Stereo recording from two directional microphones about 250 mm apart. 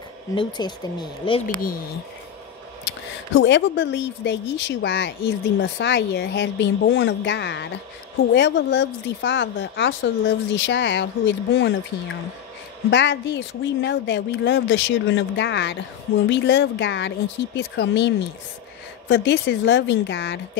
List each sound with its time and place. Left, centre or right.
0.3 s speech: centre
3.3 s a woman's voice: left
12.9 s a woman's voice: left